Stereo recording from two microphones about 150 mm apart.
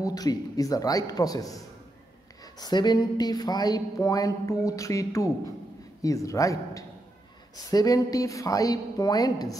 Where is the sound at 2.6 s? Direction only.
30° left (ahead or behind).